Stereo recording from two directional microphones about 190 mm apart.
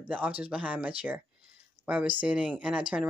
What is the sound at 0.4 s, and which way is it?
Speech, 5° right (ahead or behind).